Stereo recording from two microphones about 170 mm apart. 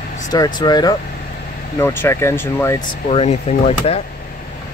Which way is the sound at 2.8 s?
40° left (ahead or behind).